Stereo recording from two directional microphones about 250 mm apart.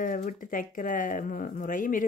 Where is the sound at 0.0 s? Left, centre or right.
Left.